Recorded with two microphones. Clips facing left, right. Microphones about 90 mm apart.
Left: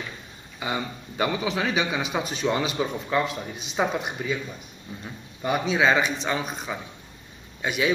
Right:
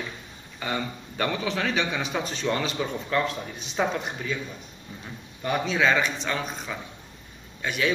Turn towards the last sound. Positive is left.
turn(degrees=15)  # may be behind; listen again after turning